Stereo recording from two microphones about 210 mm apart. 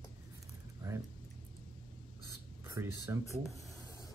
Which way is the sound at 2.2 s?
15° right (ahead or behind).